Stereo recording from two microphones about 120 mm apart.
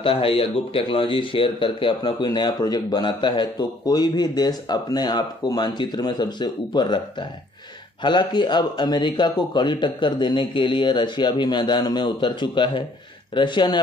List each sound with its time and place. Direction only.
0.0 s speech: 50° left (ahead or behind)